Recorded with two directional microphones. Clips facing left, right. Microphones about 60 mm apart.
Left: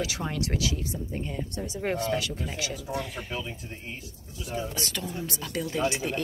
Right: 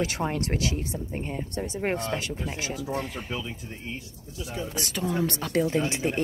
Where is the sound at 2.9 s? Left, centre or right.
Right.